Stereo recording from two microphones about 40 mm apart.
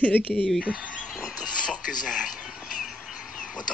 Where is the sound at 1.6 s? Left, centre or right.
Centre.